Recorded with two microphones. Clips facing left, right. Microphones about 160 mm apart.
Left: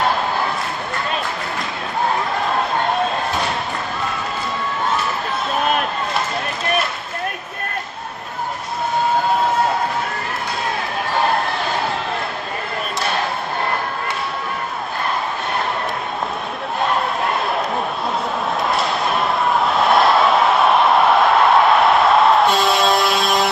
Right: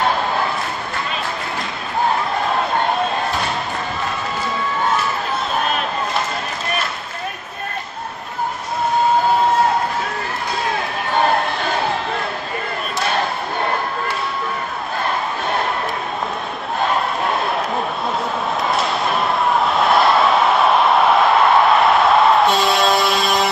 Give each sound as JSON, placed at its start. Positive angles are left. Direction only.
{"t": 16.8, "sound": "crowd", "side_deg": 0}
{"t": 18.7, "sound": "basketball bounce", "side_deg": 0}